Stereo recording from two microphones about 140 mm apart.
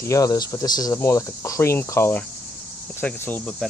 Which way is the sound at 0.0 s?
25° left (ahead or behind).